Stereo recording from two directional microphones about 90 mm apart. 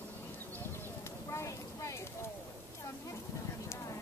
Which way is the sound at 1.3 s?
35° left (ahead or behind).